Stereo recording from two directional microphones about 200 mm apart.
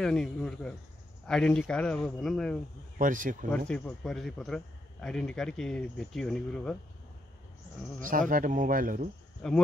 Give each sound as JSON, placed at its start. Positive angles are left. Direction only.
{"t": 0.0, "sound": "a man's voice", "side_deg": 5}
{"t": 3.0, "sound": "speech", "side_deg": -40}
{"t": 3.5, "sound": "a man's voice", "side_deg": 5}
{"t": 8.1, "sound": "speech", "side_deg": -45}
{"t": 9.4, "sound": "a man's voice", "side_deg": 5}